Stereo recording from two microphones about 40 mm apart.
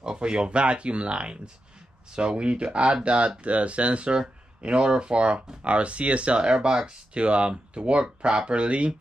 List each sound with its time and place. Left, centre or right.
0.0 s speech: right